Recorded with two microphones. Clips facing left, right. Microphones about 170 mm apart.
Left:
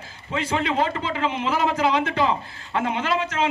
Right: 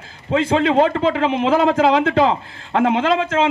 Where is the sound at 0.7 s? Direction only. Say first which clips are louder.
Right 8 dB; 65° right (ahead or behind); by 1.5 s 90° right.